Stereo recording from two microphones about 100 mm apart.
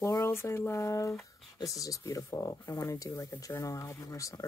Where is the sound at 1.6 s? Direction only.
35° left (ahead or behind).